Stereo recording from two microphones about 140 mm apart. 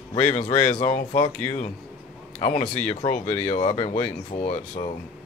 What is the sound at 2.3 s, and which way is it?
Speech, 45° left (ahead or behind).